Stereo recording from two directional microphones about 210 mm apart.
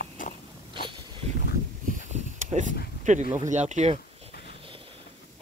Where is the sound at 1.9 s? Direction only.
35° right (ahead or behind).